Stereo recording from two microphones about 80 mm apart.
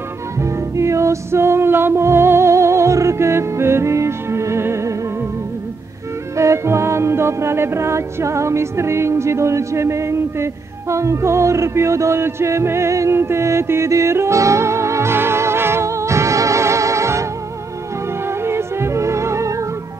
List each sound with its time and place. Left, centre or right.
0.4 s music: right
6.3 s music: right
18.4 s music: right